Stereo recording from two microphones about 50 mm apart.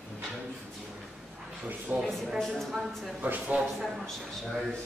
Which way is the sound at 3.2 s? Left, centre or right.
Right.